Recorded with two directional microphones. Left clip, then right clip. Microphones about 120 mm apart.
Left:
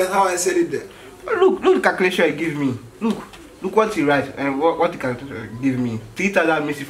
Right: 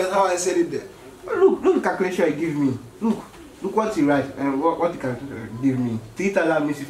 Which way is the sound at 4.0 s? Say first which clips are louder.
Left 2 dB; 40° left (ahead or behind).